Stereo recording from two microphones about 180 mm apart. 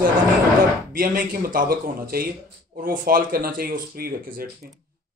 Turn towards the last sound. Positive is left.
turn(degrees=-55)  # may be behind; listen again after turning